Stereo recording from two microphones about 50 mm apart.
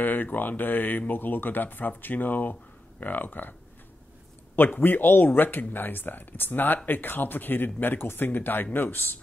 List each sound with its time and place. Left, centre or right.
0.0 s speech: left
4.7 s speech: left